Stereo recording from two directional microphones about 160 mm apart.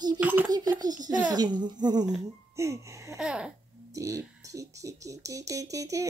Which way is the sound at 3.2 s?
5° right (ahead or behind).